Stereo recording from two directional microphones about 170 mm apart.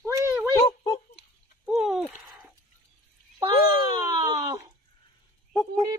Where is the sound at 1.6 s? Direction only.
5° right (ahead or behind).